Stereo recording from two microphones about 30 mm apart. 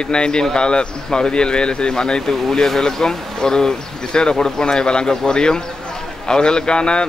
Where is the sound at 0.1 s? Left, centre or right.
Left.